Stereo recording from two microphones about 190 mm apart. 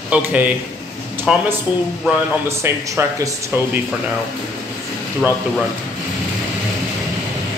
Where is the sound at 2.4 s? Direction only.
15° right (ahead or behind).